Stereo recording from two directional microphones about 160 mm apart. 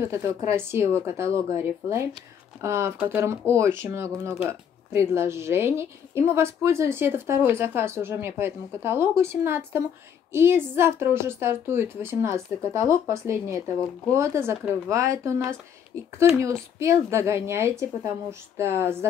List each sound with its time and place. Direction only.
0.0 s a woman's voice: 15° right (ahead or behind)